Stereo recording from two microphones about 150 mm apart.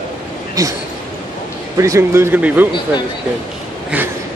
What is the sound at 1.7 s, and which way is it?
Speech, 20° right (ahead or behind).